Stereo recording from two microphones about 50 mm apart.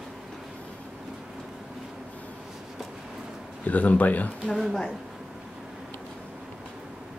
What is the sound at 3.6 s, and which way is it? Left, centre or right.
Speech, left.